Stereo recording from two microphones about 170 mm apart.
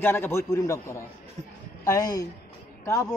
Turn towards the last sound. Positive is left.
turn(degrees=15)  # may be behind; listen again after turning